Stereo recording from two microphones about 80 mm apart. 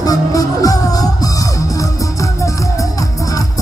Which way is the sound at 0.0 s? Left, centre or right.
Left.